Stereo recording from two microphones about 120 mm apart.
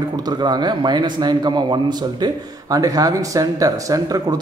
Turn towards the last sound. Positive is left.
turn(degrees=-30)  # may be behind; listen again after turning